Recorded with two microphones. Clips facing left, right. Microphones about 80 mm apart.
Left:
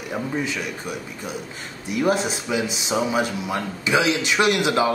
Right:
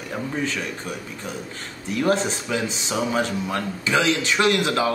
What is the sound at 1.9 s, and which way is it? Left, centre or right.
Speech, centre.